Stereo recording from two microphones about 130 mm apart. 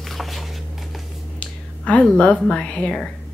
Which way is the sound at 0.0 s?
Centre (ahead or behind).